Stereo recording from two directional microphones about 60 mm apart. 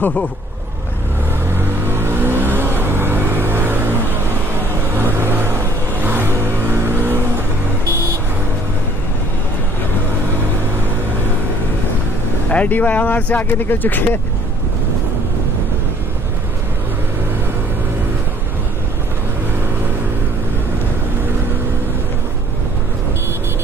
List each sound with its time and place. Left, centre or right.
1.6 s vehicle: right
12.4 s speech: left